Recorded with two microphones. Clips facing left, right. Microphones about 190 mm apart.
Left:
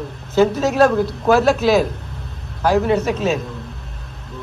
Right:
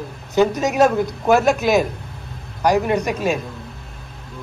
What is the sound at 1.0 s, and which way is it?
Speech, 15° right (ahead or behind).